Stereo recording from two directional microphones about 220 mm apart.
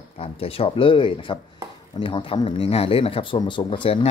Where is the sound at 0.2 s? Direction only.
25° left (ahead or behind).